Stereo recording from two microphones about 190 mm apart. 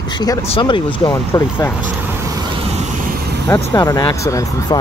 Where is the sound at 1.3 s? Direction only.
15° left (ahead or behind).